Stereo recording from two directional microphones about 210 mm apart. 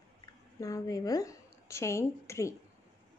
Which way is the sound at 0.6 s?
15° left (ahead or behind).